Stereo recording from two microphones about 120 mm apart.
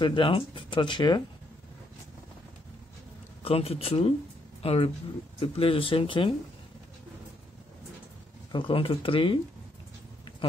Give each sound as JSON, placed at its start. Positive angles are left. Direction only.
{"t": 0.0, "sound": "speech", "side_deg": 45}
{"t": 3.4, "sound": "speech", "side_deg": 55}
{"t": 8.5, "sound": "speech", "side_deg": 45}